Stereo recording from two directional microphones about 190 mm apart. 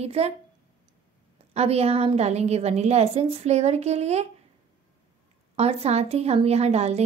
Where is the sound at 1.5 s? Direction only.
35° right (ahead or behind).